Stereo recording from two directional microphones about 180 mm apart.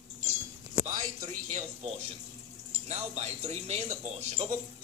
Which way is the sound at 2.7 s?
35° right (ahead or behind).